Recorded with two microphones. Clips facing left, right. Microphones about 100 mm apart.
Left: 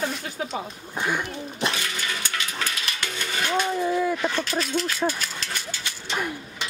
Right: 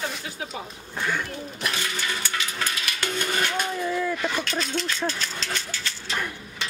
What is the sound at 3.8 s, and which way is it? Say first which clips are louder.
Speech: left 3 dB; 15° left (ahead or behind).